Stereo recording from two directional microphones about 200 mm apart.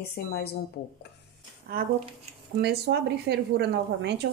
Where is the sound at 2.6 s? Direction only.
55° right (ahead or behind).